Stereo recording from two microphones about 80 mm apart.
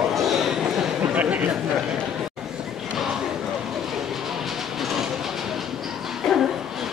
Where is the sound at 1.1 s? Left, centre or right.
Centre.